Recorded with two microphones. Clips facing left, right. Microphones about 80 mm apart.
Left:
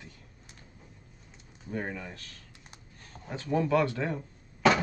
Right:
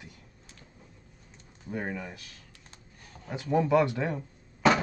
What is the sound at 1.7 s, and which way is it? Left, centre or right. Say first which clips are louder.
Speech: right 1 dB; centre.